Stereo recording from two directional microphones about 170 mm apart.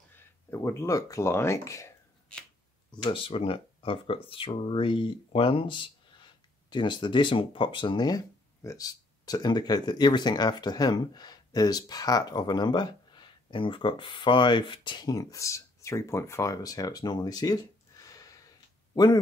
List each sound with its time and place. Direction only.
0.1 s speech: 15° left (ahead or behind)
2.9 s speech: 30° left (ahead or behind)